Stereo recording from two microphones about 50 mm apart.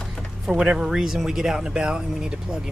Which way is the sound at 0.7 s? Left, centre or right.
Centre.